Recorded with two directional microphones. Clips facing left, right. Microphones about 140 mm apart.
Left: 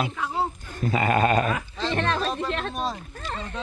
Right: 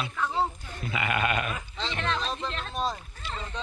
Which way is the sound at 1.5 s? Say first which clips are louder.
Left 8 dB; 55° left (ahead or behind).